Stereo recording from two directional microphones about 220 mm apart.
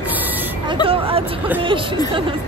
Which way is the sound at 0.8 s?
25° right (ahead or behind).